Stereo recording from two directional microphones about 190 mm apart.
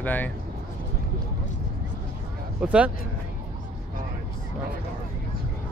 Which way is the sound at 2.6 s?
5° right (ahead or behind).